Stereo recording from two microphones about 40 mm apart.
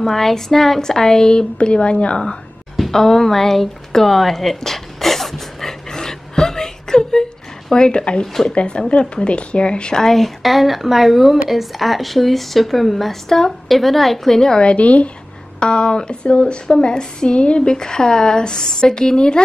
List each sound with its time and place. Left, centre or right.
0.0 s speech: centre; by 2.3 s left
2.7 s speech: centre
4.6 s dog: centre
7.7 s speech: left
8.3 s speech: centre
8.5 s speech: left
10.0 s speech: centre
14.6 s a woman's voice: left
15.6 s speech: left